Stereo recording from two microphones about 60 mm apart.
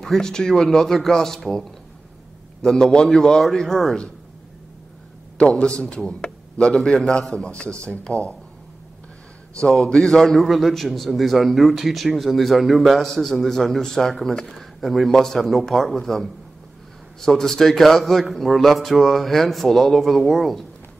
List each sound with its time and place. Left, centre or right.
0.0 s speech: centre
5.5 s speech: centre
9.8 s a man's voice: centre